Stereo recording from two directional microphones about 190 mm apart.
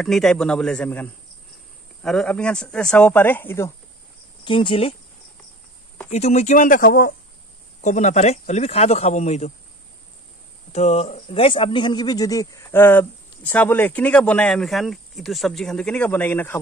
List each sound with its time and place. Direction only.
0.0 s speech: centre (ahead or behind)
4.5 s speech: 25° left (ahead or behind)
6.1 s speech: 35° left (ahead or behind); by 7.2 s 50° left (ahead or behind)
7.8 s speech: 40° left (ahead or behind)
10.7 s speech: 35° left (ahead or behind); by 16.5 s 10° left (ahead or behind)